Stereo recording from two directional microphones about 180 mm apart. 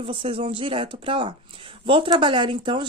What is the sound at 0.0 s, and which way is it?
Speech, 30° right (ahead or behind).